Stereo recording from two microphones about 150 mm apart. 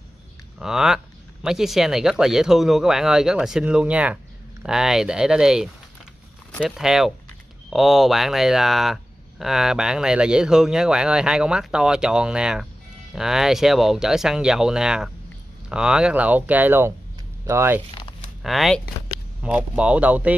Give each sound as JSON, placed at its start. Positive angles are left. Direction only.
{"t": 0.6, "sound": "speech", "side_deg": -5}
{"t": 18.4, "sound": "speech", "side_deg": 0}